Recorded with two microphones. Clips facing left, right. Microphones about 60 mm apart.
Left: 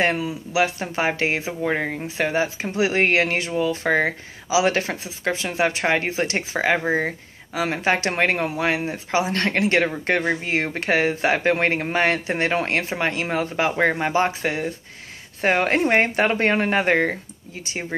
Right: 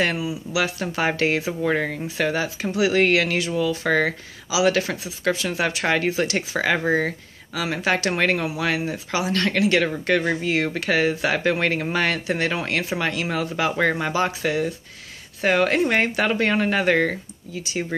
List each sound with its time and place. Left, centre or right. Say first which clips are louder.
0.2 s speech: left 2 dB; left
7.5 s speech: left 1 dB; left